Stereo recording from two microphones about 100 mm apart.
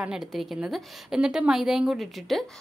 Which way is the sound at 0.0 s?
5° right (ahead or behind).